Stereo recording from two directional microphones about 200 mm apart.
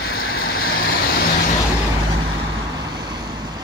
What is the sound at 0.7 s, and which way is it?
Vehicle, 50° left (ahead or behind).